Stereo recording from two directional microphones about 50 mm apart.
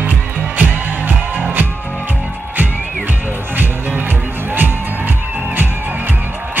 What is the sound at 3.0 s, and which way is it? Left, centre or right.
Music, right.